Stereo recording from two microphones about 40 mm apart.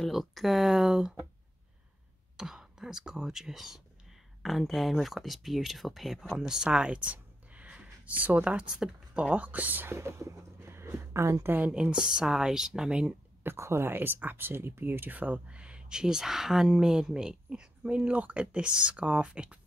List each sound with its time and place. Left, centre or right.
0.1 s speech: centre
2.3 s speech: centre
6.3 s speech: centre
7.0 s a sound: right
8.1 s speech: right
8.7 s speech: right
9.3 s speech: right
9.8 s speech: right
11.7 s speech: right
13.4 s speech: right
15.0 s speech: right
15.4 s speech: right